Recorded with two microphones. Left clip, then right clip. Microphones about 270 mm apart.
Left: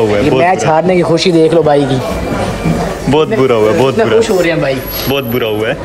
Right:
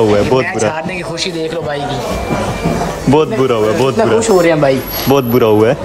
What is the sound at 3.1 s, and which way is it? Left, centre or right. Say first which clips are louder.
A man's voice: left 2 dB; centre.